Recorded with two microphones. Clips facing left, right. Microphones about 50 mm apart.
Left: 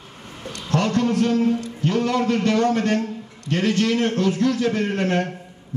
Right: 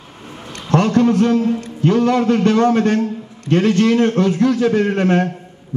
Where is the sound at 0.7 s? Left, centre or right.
Right.